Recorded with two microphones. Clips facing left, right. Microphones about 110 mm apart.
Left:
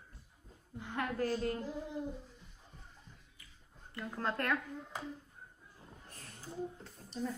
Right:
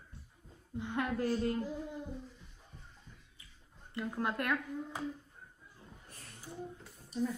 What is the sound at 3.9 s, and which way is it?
Speech, 15° right (ahead or behind).